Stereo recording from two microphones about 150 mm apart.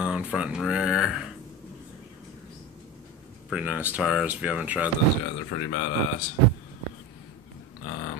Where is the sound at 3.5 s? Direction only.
10° right (ahead or behind).